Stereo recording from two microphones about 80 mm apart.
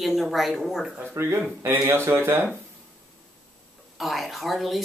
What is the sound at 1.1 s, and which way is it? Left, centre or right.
Speech, right.